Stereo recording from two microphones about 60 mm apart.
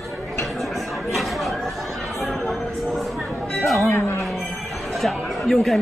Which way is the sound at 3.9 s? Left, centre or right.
Left.